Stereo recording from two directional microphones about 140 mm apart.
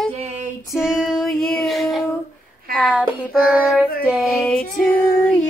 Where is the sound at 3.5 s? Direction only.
5° right (ahead or behind).